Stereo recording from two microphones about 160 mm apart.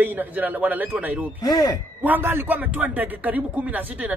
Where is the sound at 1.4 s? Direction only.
25° left (ahead or behind).